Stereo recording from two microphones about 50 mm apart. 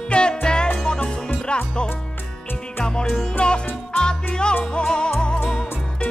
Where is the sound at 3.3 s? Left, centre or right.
Centre.